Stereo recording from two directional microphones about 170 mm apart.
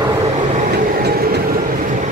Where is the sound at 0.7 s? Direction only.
65° right (ahead or behind).